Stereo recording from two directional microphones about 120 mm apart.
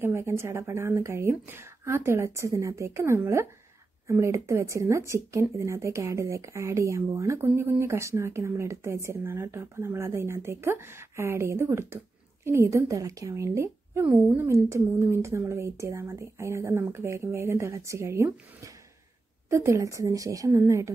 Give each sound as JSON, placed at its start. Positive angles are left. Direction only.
{"t": 0.0, "sound": "speech", "side_deg": -20}